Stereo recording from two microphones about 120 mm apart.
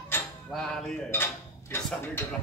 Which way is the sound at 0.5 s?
5° left (ahead or behind).